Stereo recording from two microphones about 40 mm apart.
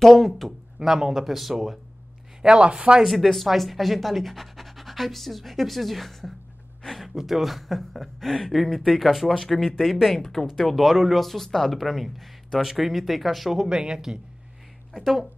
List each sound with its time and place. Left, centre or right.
0.0 s speech: centre
0.7 s speech: centre
2.4 s speech: right
3.0 s speech: centre
9.6 s speech: centre
13.7 s speech: centre
15.0 s speech: centre